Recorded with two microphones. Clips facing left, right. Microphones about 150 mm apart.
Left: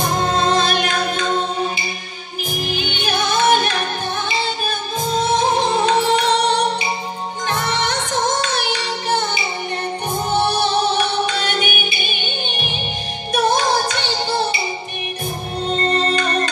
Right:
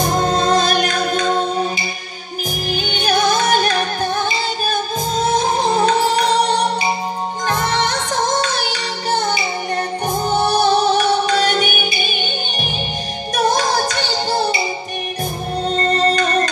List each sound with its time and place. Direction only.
0.0 s music: 40° right (ahead or behind)
2.7 s music: 40° right (ahead or behind)
5.3 s music: 40° right (ahead or behind)
10.5 s music: 40° right (ahead or behind)
13.6 s music: 40° right (ahead or behind)
15.7 s music: 40° right (ahead or behind)